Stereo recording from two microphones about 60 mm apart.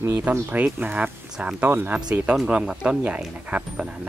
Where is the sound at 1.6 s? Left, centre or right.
Right.